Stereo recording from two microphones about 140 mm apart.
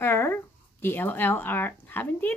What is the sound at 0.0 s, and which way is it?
Speech, 15° left (ahead or behind).